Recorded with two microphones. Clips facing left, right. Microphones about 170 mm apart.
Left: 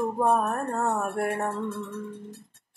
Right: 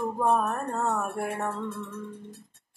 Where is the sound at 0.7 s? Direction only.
15° left (ahead or behind).